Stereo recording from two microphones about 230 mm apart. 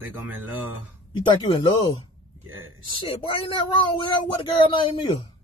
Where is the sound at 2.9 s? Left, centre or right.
Left.